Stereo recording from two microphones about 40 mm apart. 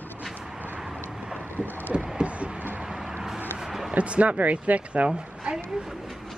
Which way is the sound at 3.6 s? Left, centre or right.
Centre.